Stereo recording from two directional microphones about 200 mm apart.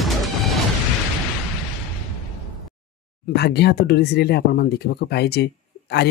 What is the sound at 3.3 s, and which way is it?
Speech, 55° left (ahead or behind).